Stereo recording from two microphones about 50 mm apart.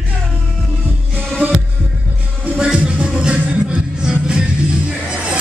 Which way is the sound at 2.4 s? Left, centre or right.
Right.